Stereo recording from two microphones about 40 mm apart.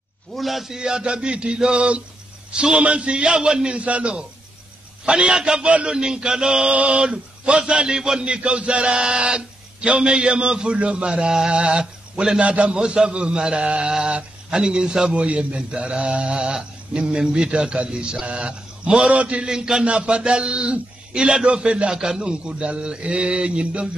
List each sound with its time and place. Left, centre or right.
0.3 s a man's voice: centre
0.7 s speech: right
3.7 s a man's voice: right
5.9 s a sound: centre
6.7 s a man's voice: right
7.0 s speech: right
8.3 s a man's voice: right
12.4 s a man's voice: right
12.7 s speech: right
15.1 s a man's voice: right
19.5 s speech: centre